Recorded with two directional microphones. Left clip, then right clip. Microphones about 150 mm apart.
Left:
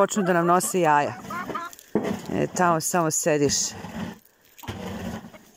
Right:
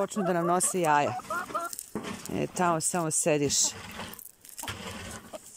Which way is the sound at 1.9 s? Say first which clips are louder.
Left 11 dB; 60° left (ahead or behind).